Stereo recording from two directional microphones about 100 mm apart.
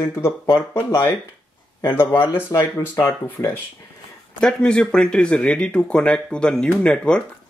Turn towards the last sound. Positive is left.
turn(degrees=10)  # may be behind; listen again after turning